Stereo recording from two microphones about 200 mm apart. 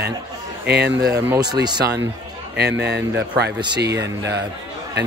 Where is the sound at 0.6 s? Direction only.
55° right (ahead or behind).